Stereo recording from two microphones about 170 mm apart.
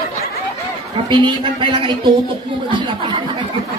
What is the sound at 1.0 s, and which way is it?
A woman's voice, 30° right (ahead or behind).